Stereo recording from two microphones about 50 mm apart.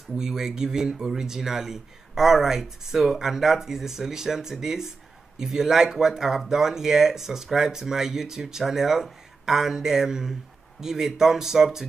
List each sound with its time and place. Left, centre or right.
0.1 s speech: centre